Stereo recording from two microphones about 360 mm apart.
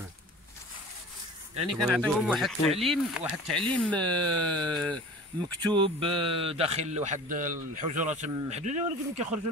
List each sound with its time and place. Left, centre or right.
1.7 s speech: centre
5.7 s speech: centre